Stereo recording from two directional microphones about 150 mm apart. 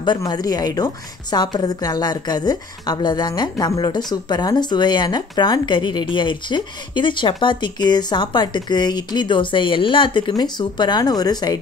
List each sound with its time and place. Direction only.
0.0 s speech: 30° left (ahead or behind)